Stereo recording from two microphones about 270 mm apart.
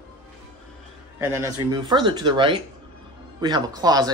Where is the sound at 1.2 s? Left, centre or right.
Centre.